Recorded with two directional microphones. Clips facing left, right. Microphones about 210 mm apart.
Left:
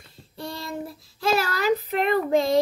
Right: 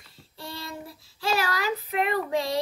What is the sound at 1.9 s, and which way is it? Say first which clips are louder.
Child singing: left 5 dB; 40° left (ahead or behind).